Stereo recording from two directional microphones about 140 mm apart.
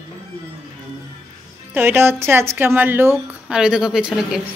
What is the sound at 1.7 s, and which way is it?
A woman's voice, 15° right (ahead or behind).